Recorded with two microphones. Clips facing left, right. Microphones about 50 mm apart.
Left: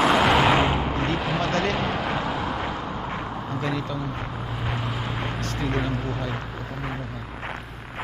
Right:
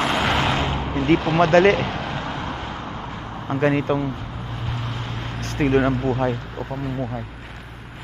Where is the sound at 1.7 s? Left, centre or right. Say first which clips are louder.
Even; centre.